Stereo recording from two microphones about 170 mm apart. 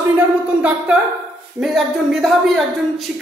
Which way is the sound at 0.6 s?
10° right (ahead or behind).